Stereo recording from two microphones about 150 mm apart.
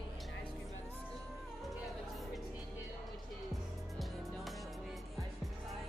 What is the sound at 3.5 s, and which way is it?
Music, centre (ahead or behind).